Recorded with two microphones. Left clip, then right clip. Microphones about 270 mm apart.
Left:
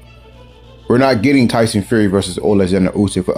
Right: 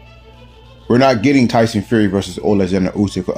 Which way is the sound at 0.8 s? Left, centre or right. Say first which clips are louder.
Even; centre.